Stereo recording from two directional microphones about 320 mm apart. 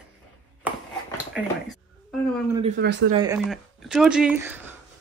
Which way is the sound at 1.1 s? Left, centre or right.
Centre.